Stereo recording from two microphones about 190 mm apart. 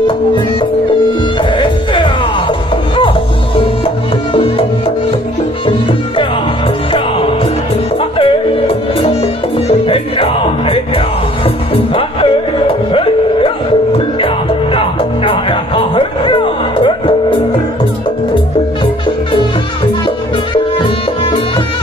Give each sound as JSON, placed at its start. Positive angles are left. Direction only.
{"t": 1.4, "sound": "music", "side_deg": 25}
{"t": 3.5, "sound": "music", "side_deg": 30}
{"t": 20.5, "sound": "music", "side_deg": 25}